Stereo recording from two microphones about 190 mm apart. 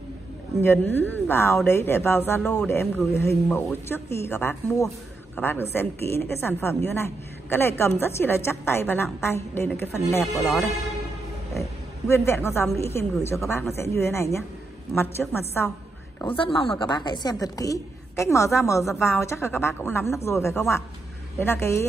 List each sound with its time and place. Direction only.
0.6 s speech: 10° left (ahead or behind)
10.2 s speech: centre (ahead or behind)
12.1 s speech: 15° left (ahead or behind)
16.6 s speech: 25° left (ahead or behind)